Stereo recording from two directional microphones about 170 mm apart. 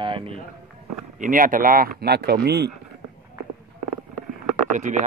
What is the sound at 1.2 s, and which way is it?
Speech, 55° right (ahead or behind).